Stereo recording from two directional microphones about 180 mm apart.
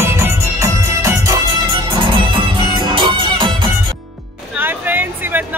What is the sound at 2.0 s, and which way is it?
Music, 25° right (ahead or behind).